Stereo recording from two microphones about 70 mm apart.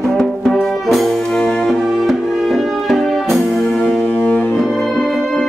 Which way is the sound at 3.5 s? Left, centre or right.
Centre.